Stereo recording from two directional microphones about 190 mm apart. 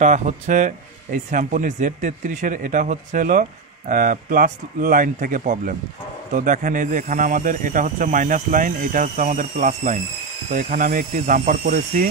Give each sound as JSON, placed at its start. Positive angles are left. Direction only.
{"t": 0.0, "sound": "speech", "side_deg": -40}